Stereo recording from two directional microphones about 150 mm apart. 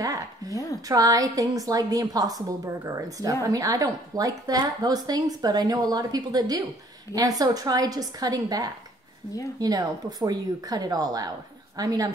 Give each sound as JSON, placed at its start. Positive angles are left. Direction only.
{"t": 0.5, "sound": "speech", "side_deg": 20}
{"t": 0.8, "sound": "a woman's voice", "side_deg": -25}